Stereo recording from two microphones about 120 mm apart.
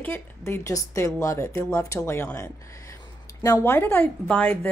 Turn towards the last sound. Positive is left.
turn(degrees=15)  # may be behind; listen again after turning